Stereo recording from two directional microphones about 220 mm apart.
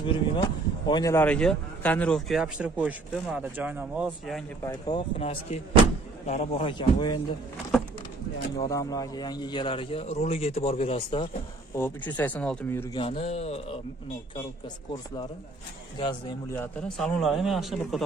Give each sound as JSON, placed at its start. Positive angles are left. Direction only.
{"t": 0.0, "sound": "speech", "side_deg": 20}
{"t": 4.8, "sound": "a man's voice", "side_deg": 25}
{"t": 8.6, "sound": "a man's voice", "side_deg": 15}
{"t": 11.7, "sound": "speech", "side_deg": 10}
{"t": 12.9, "sound": "a man's voice", "side_deg": 25}
{"t": 16.0, "sound": "a man's voice", "side_deg": 20}
{"t": 16.5, "sound": "speech", "side_deg": 5}